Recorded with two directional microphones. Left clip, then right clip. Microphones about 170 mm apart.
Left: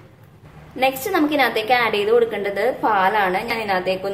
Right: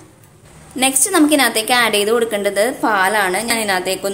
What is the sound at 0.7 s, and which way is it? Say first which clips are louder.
A woman's voice: right 4 dB; 30° right (ahead or behind).